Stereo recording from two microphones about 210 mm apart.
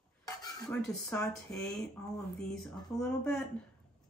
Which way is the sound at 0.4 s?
20° left (ahead or behind).